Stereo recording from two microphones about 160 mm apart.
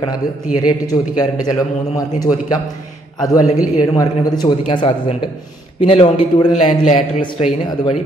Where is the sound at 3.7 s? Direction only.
25° left (ahead or behind).